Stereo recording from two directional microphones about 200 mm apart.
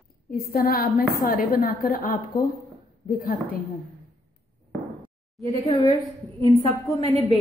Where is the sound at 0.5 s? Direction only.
50° left (ahead or behind).